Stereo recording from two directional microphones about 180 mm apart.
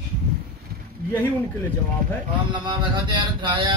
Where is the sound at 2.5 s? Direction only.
25° right (ahead or behind).